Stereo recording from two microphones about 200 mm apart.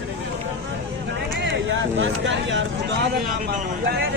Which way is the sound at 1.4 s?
70° right (ahead or behind).